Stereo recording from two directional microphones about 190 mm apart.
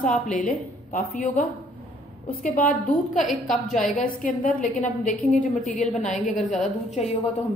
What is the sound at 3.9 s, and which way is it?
A woman's voice, 45° left (ahead or behind).